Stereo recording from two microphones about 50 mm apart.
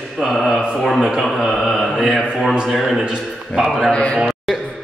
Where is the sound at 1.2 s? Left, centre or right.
Centre.